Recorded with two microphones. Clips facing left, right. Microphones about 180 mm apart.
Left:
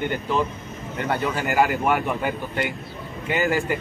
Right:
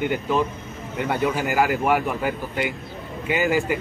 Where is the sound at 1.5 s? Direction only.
Centre (ahead or behind).